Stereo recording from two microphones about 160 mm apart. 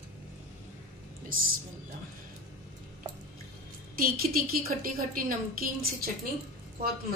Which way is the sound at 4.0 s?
65° right (ahead or behind).